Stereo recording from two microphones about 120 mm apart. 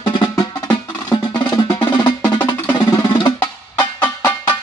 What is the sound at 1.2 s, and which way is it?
Percussion, 40° left (ahead or behind).